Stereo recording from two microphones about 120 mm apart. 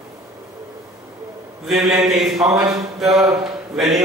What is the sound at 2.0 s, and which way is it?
A man's voice, 5° right (ahead or behind).